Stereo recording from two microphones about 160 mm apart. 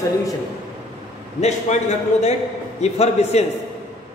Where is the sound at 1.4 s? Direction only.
45° left (ahead or behind).